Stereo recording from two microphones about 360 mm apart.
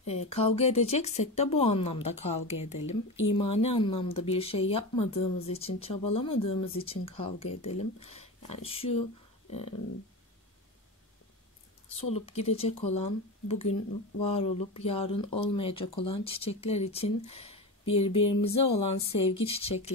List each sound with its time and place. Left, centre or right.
0.0 s speech: centre
2.5 s speech: left
3.3 s speech: centre
12.0 s speech: centre